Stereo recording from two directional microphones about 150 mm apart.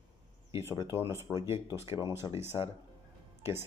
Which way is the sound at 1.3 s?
30° left (ahead or behind).